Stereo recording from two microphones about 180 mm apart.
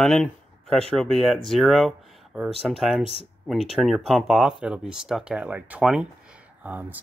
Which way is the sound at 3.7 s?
Centre (ahead or behind).